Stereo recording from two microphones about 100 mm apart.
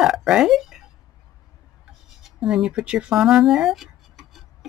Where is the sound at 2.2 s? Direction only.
5° right (ahead or behind).